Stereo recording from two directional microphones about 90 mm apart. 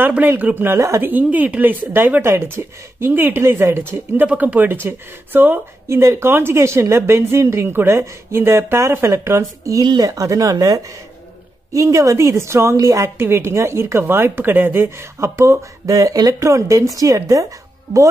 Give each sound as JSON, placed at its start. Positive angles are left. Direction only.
{"t": 0.1, "sound": "speech", "side_deg": -20}
{"t": 0.7, "sound": "a woman's voice", "side_deg": -35}
{"t": 1.0, "sound": "a woman's voice", "side_deg": -20}